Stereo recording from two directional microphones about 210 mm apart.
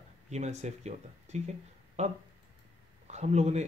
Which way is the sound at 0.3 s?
35° right (ahead or behind).